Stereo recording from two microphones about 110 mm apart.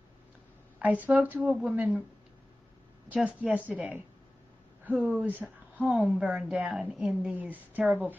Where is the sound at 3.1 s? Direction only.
10° right (ahead or behind).